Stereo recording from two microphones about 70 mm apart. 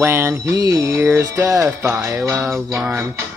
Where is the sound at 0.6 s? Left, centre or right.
Right.